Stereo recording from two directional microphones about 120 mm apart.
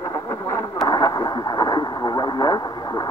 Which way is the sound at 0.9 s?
35° left (ahead or behind).